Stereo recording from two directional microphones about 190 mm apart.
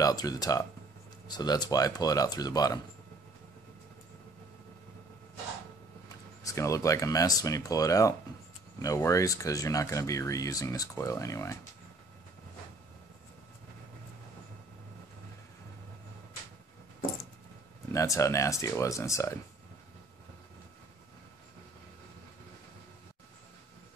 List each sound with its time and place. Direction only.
0.0 s speech: 20° left (ahead or behind)
6.4 s speech: 15° left (ahead or behind)
17.9 s speech: 15° left (ahead or behind)